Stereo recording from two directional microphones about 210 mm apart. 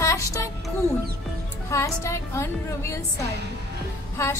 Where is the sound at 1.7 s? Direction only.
15° left (ahead or behind).